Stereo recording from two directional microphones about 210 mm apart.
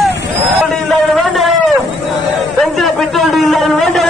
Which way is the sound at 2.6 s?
Centre (ahead or behind).